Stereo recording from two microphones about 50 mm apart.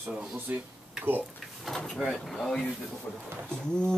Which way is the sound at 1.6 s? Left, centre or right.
Centre.